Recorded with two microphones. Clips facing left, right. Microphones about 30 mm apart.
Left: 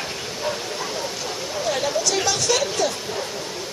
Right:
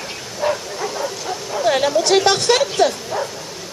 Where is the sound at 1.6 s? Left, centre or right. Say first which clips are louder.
Right 8 dB; right.